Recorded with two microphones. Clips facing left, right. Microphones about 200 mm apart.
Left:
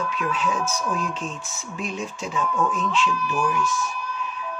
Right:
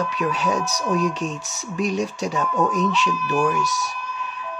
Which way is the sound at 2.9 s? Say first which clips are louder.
Right 1 dB; 70° right (ahead or behind).